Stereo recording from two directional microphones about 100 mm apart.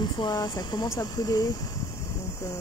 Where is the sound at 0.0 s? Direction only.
45° left (ahead or behind).